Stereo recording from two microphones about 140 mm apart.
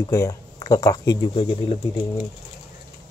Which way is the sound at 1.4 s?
45° left (ahead or behind).